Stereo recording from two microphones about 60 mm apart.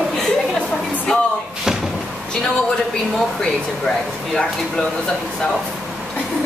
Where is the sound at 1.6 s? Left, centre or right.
Centre.